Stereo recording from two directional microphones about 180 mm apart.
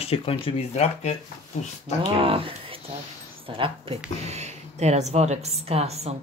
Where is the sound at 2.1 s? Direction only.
30° right (ahead or behind).